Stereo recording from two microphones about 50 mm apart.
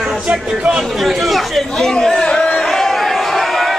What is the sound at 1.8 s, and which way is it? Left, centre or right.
Speech, centre.